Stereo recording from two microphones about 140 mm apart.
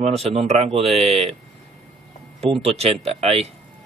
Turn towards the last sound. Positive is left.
turn(degrees=-45)  # may be behind; listen again after turning